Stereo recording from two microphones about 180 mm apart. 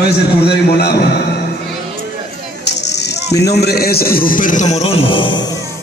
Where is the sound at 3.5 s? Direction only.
65° left (ahead or behind); by 5.5 s 25° left (ahead or behind).